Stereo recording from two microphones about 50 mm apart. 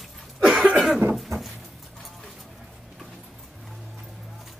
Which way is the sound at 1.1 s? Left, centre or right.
Centre.